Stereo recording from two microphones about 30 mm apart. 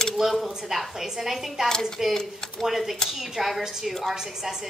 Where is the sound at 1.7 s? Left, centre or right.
Centre.